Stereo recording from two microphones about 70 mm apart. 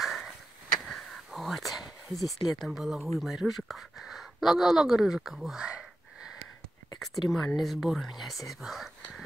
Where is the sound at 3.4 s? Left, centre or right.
Centre.